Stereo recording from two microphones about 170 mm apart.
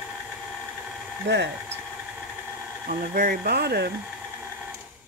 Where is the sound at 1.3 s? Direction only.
90° right.